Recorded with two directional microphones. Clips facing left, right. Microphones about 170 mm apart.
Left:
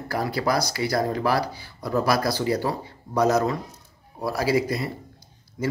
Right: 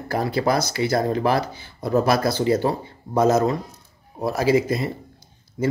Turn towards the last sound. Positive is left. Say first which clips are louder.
# right 4 dB
turn(degrees=-25)  # may be behind; listen again after turning